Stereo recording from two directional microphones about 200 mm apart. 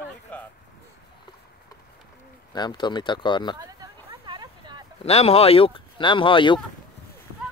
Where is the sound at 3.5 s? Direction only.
20° right (ahead or behind).